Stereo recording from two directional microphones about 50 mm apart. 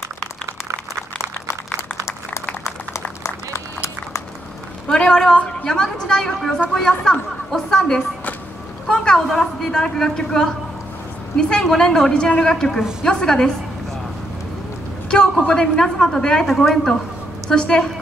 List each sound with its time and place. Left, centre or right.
3.3 s run: left
4.8 s a woman's voice: centre
8.8 s a sound: centre
9.3 s a woman's voice: centre
12.1 s a woman's voice: left
15.4 s a woman's voice: centre
16.4 s a woman's voice: centre
17.5 s a woman's voice: centre